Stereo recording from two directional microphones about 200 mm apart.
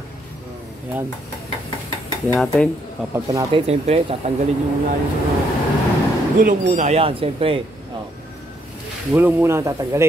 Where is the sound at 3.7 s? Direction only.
30° right (ahead or behind).